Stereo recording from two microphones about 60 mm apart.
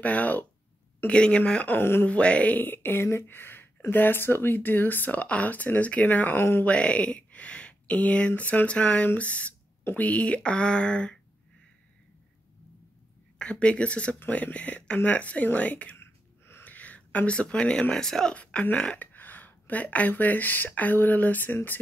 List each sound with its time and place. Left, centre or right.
0.0 s speech: left
1.8 s speech: left
2.0 s speech: left
6.6 s speech: left
13.4 s speech: centre
16.0 s a sound: left
16.6 s speech: left
18.3 s speech: left